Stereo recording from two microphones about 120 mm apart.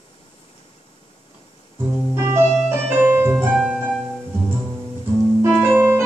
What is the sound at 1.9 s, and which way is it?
Keyboard, 20° right (ahead or behind).